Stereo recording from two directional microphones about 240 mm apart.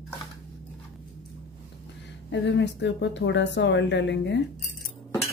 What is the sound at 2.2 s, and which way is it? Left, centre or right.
A woman's voice, left.